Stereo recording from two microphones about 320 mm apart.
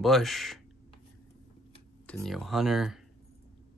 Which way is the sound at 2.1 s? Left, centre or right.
Centre.